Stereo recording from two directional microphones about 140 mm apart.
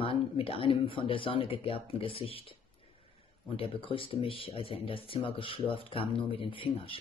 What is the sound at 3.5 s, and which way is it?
Speech, 40° left (ahead or behind).